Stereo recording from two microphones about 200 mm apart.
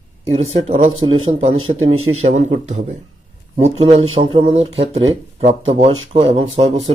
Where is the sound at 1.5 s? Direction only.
90° right.